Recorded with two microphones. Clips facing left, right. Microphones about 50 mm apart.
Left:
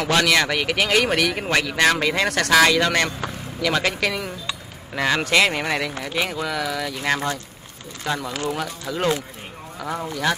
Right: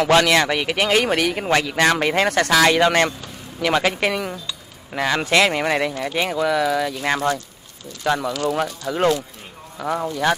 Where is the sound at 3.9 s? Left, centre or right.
Right.